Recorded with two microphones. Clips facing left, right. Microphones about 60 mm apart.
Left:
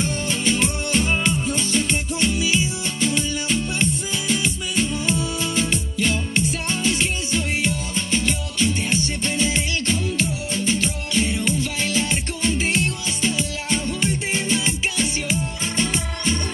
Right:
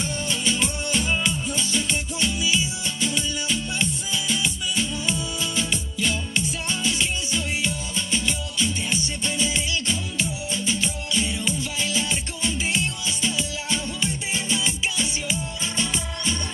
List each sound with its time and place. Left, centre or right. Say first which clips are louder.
0.0 s music: left 3 dB; left